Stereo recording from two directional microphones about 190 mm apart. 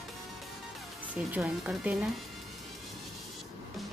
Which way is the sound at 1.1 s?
5° right (ahead or behind).